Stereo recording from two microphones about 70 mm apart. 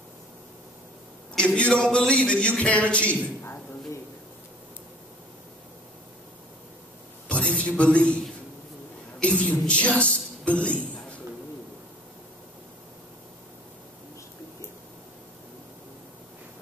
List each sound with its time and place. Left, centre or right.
1.3 s a man's voice: centre
7.2 s a man's voice: centre
9.4 s a man's voice: centre